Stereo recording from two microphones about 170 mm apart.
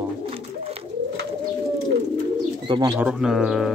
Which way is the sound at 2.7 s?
20° right (ahead or behind).